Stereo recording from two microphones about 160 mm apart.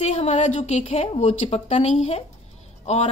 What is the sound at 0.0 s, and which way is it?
Speech, 40° left (ahead or behind).